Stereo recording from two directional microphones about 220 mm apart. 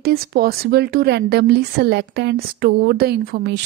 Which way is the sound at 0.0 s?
45° right (ahead or behind).